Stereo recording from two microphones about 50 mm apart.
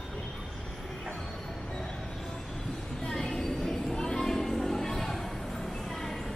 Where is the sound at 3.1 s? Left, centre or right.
Centre.